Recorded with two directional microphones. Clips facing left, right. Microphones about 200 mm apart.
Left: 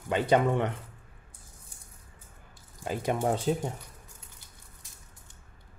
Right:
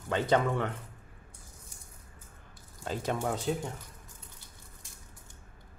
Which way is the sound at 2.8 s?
15° left (ahead or behind).